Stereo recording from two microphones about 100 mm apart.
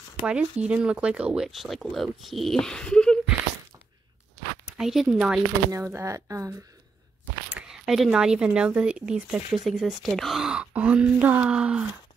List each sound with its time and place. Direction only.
0.3 s speech: 10° right (ahead or behind); by 3.2 s 10° left (ahead or behind)
4.6 s speech: 5° right (ahead or behind)
5.7 s speech: 25° right (ahead or behind)
7.5 s speech: 5° right (ahead or behind)